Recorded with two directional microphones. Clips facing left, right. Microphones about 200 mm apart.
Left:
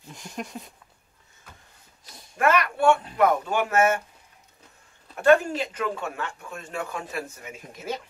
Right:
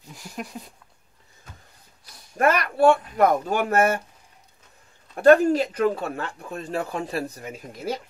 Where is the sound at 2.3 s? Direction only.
35° right (ahead or behind).